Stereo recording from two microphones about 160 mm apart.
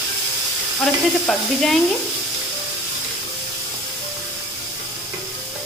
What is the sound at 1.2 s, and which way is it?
Sizzle, 5° left (ahead or behind).